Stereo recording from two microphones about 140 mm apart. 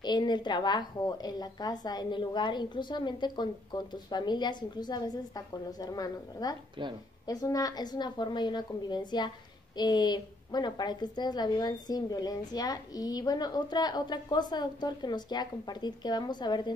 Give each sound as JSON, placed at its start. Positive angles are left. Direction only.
{"t": 0.0, "sound": "a woman's voice", "side_deg": 30}
{"t": 6.8, "sound": "a woman's voice", "side_deg": -35}
{"t": 7.2, "sound": "a woman's voice", "side_deg": 25}